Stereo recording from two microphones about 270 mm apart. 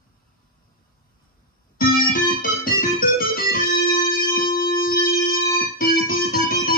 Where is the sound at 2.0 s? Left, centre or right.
Left.